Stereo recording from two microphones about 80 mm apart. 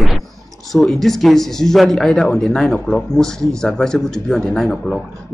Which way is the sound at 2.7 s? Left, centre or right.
Centre.